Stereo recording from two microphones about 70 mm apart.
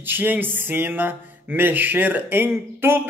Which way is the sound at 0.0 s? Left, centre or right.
Right.